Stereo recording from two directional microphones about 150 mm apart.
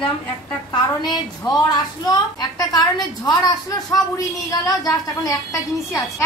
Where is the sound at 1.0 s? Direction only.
25° left (ahead or behind).